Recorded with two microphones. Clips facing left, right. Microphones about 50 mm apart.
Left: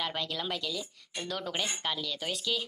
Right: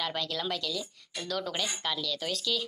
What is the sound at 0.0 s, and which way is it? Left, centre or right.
Speech, centre.